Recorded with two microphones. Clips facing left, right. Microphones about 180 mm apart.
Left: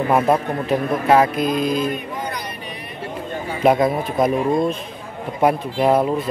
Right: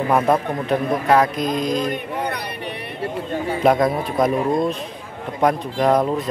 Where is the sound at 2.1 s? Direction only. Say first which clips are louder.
Right 3 dB; 65° right (ahead or behind).